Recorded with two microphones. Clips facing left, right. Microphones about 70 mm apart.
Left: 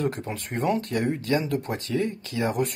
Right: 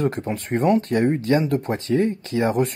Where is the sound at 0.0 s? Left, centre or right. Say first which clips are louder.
Right 5 dB; right.